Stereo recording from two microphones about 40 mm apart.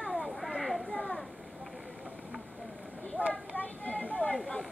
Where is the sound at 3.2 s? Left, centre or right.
Left.